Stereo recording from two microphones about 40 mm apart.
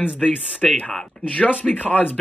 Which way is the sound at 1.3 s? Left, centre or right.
Left.